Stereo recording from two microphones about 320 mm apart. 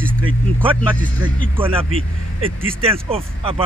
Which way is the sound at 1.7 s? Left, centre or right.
Centre.